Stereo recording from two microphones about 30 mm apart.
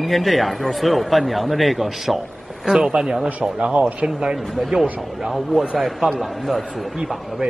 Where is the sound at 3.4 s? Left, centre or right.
Right.